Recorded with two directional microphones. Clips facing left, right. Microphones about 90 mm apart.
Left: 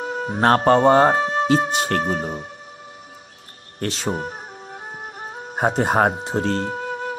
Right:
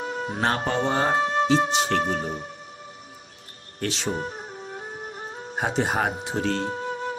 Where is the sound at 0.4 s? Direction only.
60° left (ahead or behind); by 2.4 s 40° left (ahead or behind).